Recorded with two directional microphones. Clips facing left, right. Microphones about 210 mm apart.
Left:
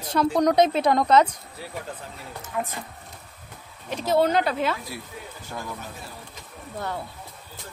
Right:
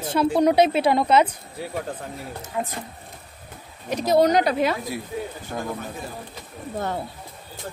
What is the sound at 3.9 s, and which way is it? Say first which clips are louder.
Speech: right 3 dB; 15° right (ahead or behind).